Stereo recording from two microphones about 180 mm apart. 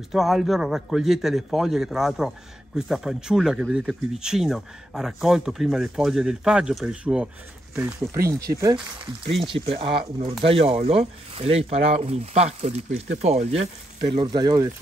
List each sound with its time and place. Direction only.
0.1 s a man's voice: centre (ahead or behind); by 8.8 s 20° right (ahead or behind)
9.4 s speech: 30° right (ahead or behind)
14.3 s speech: 20° right (ahead or behind)